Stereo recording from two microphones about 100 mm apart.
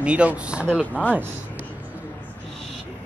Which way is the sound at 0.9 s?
15° left (ahead or behind).